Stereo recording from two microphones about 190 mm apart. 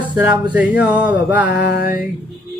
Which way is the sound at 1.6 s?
55° left (ahead or behind).